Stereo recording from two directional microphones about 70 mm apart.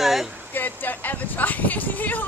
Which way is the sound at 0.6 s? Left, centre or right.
Left.